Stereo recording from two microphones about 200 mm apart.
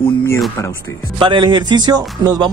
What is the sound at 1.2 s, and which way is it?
Speech, 25° right (ahead or behind).